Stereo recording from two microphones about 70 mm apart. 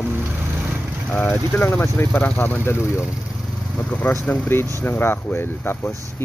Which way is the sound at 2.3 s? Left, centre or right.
Left.